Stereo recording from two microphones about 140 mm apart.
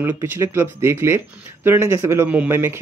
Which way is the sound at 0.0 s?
15° right (ahead or behind).